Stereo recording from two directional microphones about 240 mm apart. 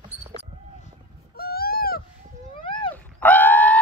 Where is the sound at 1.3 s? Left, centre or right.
Left.